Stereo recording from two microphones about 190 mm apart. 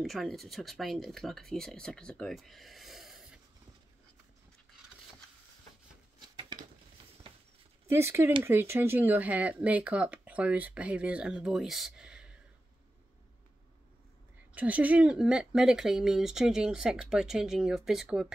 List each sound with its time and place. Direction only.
0.0 s speech: centre (ahead or behind)
6.5 s patter: 25° right (ahead or behind)
7.9 s speech: 15° right (ahead or behind)
14.5 s speech: 10° right (ahead or behind)